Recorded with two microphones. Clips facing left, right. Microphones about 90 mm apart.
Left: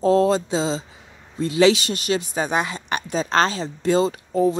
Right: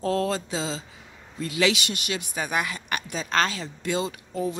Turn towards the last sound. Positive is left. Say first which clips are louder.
# left 9 dB
turn(degrees=35)  # may be behind; listen again after turning